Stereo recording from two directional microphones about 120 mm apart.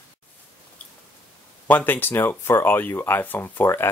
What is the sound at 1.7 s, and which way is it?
Speech, 15° left (ahead or behind).